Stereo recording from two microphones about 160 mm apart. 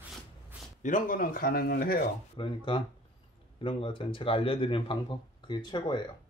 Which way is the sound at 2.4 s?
30° left (ahead or behind).